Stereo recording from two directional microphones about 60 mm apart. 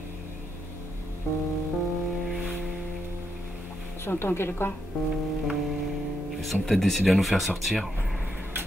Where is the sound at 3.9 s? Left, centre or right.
Left.